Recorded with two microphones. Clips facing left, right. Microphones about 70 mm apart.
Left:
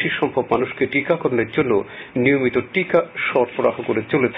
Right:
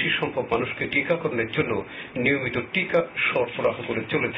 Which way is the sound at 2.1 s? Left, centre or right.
Left.